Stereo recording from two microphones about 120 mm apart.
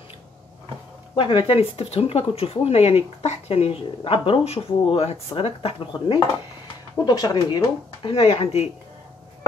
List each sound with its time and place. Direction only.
1.1 s speech: 45° left (ahead or behind)
7.1 s speech: 35° left (ahead or behind)
8.1 s speech: 55° left (ahead or behind)